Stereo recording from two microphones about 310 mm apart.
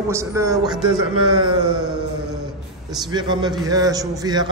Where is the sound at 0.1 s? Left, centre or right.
Centre.